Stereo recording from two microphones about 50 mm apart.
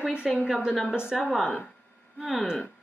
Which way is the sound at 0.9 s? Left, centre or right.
Centre.